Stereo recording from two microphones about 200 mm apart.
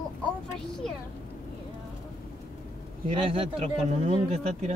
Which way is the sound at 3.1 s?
25° right (ahead or behind).